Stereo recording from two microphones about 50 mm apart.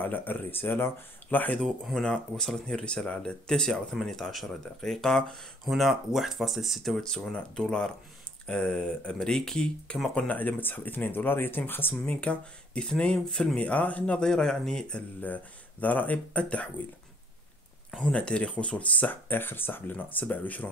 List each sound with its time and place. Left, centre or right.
0.0 s speech: left
1.3 s speech: left
1.6 s speech: centre
2.0 s speech: centre
10.1 s speech: left
12.1 s speech: left
13.6 s speech: left
14.2 s speech: centre
15.0 s speech: left
18.1 s speech: left
19.9 s speech: left